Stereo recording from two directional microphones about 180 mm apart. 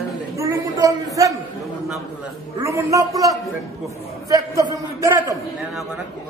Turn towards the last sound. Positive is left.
turn(degrees=-15)  # may be behind; listen again after turning